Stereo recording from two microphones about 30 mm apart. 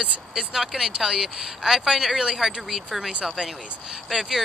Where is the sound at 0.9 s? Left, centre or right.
Right.